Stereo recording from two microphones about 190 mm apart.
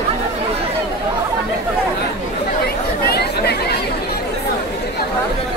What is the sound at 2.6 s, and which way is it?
Chatter, 55° left (ahead or behind).